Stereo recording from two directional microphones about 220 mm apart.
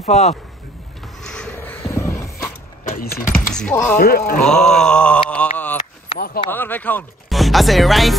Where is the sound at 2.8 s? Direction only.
35° left (ahead or behind).